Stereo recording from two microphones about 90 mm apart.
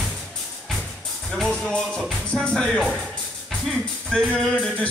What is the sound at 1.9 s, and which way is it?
Speech, 5° left (ahead or behind).